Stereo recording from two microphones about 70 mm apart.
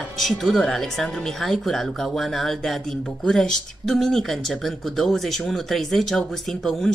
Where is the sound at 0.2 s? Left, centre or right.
Centre.